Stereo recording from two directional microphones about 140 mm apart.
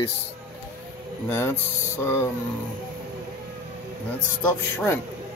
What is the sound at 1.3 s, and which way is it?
Speech, 15° left (ahead or behind).